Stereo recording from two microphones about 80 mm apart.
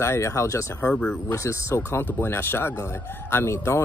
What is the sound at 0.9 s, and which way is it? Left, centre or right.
Speech, centre.